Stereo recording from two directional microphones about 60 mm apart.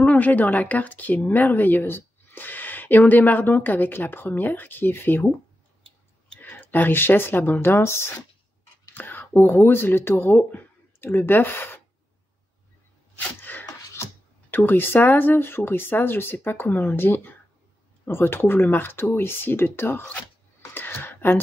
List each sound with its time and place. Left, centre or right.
0.0 s speech: left
6.4 s speech: left
8.9 s speech: left
13.2 s sneeze: left
14.5 s speech: left
20.7 s a sound: left